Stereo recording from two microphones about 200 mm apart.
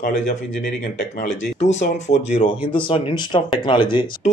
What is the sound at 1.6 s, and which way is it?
Speech, 35° left (ahead or behind).